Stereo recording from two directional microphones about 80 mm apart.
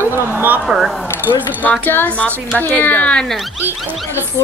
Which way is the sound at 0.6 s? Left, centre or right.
Centre.